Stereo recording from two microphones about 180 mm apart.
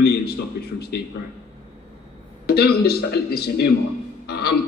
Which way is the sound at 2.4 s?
60° left (ahead or behind).